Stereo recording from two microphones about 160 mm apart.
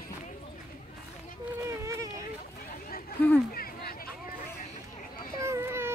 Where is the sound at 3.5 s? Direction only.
65° left (ahead or behind).